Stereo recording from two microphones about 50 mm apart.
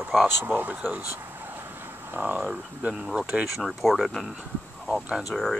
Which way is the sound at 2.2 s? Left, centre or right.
Right.